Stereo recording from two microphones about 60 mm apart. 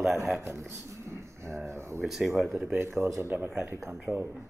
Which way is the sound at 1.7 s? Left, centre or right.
Right.